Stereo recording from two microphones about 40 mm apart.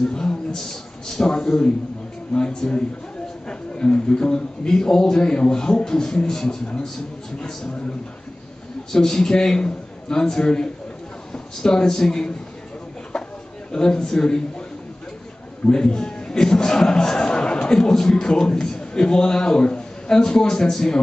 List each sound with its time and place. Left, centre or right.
0.0 s a man's voice: centre
8.9 s speech: centre
13.1 s a sound: centre
13.7 s speech: centre
15.7 s a man's voice: centre